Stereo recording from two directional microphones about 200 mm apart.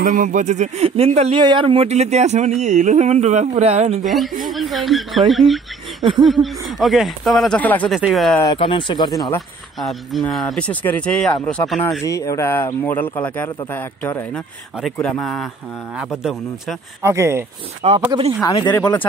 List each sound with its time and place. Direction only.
0.0 s speech: 40° right (ahead or behind)
4.0 s speech: centre (ahead or behind)
8.5 s speech: 25° left (ahead or behind)
9.8 s speech: centre (ahead or behind)
12.0 s speech: 15° left (ahead or behind); by 16.7 s 5° right (ahead or behind)
17.0 s speech: 15° right (ahead or behind)
17.8 s speech: 30° right (ahead or behind)
18.4 s speech: 15° left (ahead or behind)